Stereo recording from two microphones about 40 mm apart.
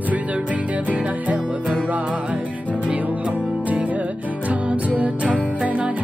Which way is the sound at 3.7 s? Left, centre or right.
Right.